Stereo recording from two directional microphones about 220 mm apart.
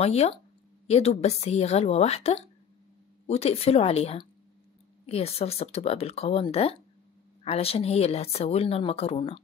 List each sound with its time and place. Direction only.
0.0 s speech: 30° left (ahead or behind)